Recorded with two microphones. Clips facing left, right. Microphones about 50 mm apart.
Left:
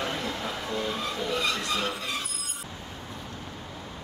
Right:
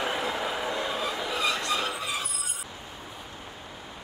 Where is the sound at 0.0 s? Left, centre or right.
Centre.